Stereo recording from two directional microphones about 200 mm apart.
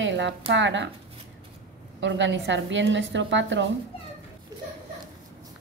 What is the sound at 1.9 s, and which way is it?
Speech, 65° right (ahead or behind).